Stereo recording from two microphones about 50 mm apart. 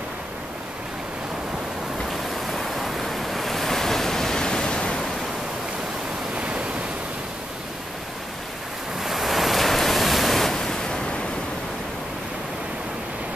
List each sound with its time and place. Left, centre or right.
2.4 s waves: centre
6.3 s waves: right
9.0 s waves: centre